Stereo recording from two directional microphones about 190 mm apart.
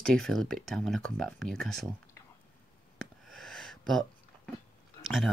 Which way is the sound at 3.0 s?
5° left (ahead or behind).